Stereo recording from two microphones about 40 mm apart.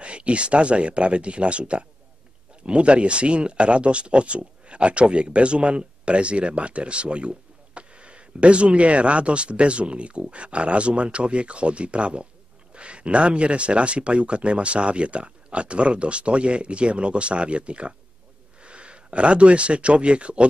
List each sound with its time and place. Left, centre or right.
0.0 s speech: right